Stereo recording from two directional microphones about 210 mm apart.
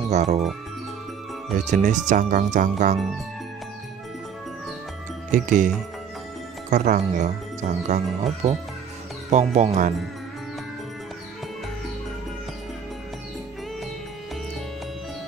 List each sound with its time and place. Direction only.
0.1 s speech: 30° right (ahead or behind)
1.6 s speech: 35° right (ahead or behind)
5.3 s speech: 35° right (ahead or behind)
6.7 s speech: 35° right (ahead or behind)